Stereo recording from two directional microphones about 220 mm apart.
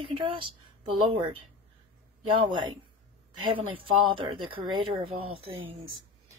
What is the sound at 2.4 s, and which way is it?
Speech, 20° right (ahead or behind).